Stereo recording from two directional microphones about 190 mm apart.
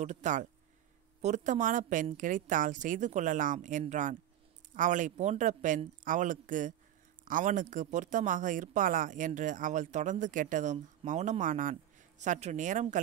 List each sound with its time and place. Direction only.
0.0 s a woman's voice: 40° right (ahead or behind)